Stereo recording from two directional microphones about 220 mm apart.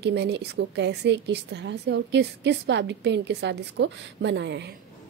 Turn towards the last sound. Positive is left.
turn(degrees=-55)  # may be behind; listen again after turning